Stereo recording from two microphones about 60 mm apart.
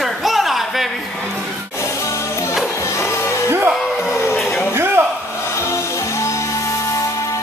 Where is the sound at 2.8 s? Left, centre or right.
Left.